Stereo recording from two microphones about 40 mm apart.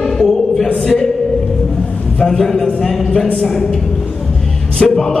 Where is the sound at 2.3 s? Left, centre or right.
Centre.